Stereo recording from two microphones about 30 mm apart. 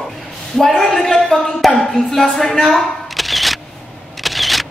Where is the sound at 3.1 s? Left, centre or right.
Centre.